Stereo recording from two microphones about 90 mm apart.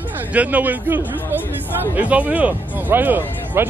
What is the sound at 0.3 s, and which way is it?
Speech, 15° right (ahead or behind).